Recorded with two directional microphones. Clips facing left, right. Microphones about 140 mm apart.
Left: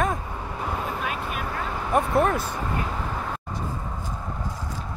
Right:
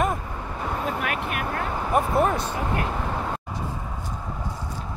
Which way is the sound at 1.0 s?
65° right (ahead or behind).